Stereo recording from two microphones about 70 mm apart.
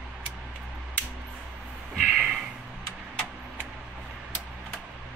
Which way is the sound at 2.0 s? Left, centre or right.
Centre.